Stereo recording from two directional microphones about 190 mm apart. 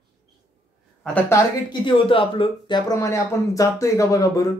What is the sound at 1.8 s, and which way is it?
Speech, 30° left (ahead or behind).